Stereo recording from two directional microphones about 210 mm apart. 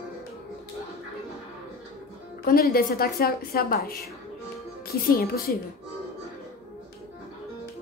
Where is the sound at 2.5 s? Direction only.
45° left (ahead or behind).